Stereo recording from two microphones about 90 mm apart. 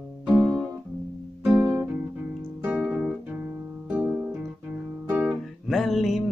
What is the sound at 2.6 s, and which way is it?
Music, 15° right (ahead or behind).